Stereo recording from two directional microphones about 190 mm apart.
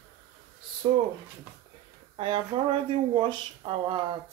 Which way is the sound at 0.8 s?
20° right (ahead or behind).